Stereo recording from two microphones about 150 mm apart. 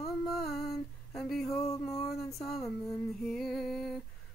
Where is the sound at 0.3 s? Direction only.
Centre (ahead or behind).